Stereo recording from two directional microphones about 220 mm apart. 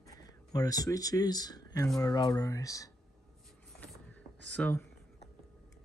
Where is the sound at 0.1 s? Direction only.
15° left (ahead or behind).